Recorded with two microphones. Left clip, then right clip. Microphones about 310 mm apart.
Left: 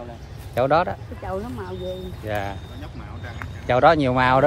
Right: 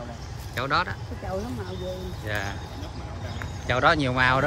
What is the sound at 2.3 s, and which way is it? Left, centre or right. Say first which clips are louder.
Speech: left 4 dB; centre.